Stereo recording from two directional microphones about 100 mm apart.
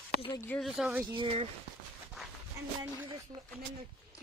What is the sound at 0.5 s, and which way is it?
Speech, 15° left (ahead or behind).